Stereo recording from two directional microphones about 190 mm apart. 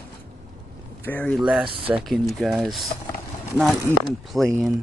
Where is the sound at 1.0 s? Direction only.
10° left (ahead or behind).